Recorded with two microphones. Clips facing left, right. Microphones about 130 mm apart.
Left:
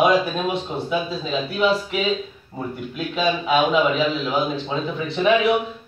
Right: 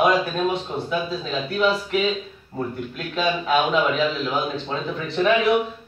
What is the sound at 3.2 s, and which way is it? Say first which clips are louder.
A man's voice: left 1 dB; 5° left (ahead or behind).